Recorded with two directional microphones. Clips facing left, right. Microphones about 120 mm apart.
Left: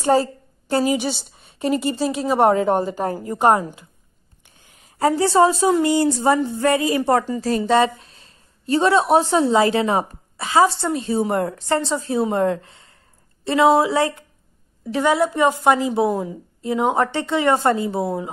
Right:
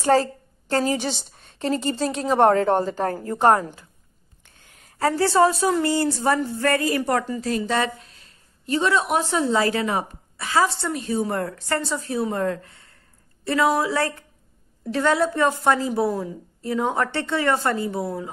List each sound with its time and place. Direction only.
0.0 s a woman's voice: 15° left (ahead or behind)
4.9 s a woman's voice: 20° left (ahead or behind)